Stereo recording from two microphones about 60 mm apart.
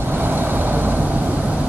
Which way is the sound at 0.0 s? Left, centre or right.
Right.